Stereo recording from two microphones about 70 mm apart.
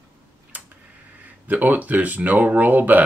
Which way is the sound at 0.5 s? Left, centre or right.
Right.